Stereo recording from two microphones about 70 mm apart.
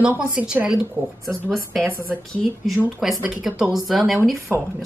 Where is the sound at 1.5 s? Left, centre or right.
Centre.